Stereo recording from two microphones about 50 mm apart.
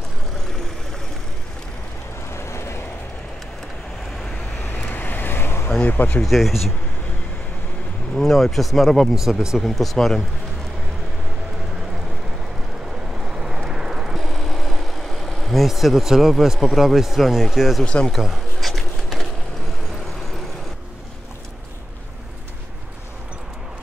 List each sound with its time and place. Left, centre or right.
2.3 s vehicle: left
4.8 s vehicle: left
5.8 s speech: left
6.2 s speech: centre
8.1 s speech: centre
9.1 s speech: centre
9.6 s speech: centre
13.2 s vehicle: centre
14.1 s speech: centre
17.8 s speech: left
18.1 s a sound: centre